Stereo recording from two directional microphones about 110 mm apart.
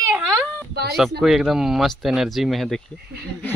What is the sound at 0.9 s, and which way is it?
Speech, centre (ahead or behind).